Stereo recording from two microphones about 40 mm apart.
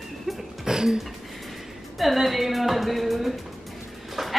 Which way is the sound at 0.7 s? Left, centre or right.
Centre.